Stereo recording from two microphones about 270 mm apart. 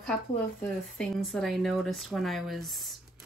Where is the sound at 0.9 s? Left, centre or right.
Centre.